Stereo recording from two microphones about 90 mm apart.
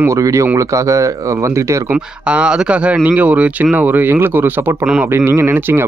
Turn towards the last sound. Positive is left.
turn(degrees=-25)  # may be behind; listen again after turning